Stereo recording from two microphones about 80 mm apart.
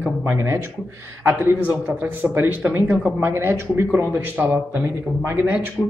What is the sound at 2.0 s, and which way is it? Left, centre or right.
A woman's voice, right.